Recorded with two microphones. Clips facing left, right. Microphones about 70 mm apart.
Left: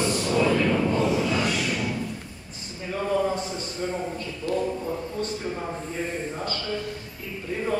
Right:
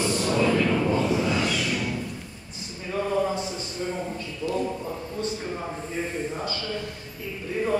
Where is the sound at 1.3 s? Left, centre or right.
Left.